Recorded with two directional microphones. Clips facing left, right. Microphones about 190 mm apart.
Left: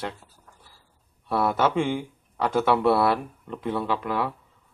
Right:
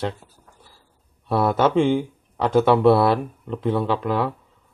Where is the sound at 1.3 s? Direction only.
25° right (ahead or behind).